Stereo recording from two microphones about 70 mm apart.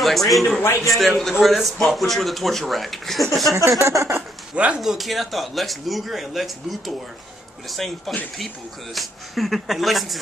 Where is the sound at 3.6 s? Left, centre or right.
Right.